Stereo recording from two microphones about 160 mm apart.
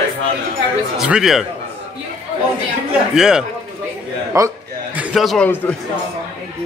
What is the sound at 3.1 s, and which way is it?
Speech, 5° right (ahead or behind).